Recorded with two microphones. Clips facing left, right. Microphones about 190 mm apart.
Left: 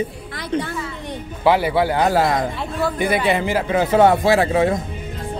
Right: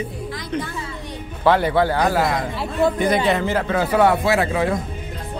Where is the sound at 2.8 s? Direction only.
20° right (ahead or behind).